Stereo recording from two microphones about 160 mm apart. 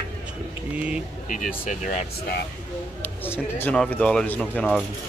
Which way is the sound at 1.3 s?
55° left (ahead or behind).